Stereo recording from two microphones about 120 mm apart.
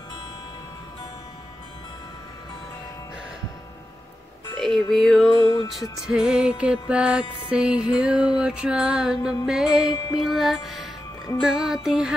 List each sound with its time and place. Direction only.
4.6 s music: centre (ahead or behind)
5.4 s music: 40° left (ahead or behind)
5.7 s music: centre (ahead or behind)